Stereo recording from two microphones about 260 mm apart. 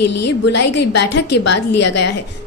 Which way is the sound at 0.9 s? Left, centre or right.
Left.